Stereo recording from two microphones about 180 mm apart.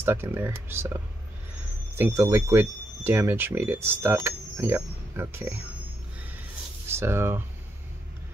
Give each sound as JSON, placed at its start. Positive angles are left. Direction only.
{"t": 0.0, "sound": "speech", "side_deg": -10}
{"t": 2.0, "sound": "speech", "side_deg": -15}
{"t": 6.9, "sound": "speech", "side_deg": -15}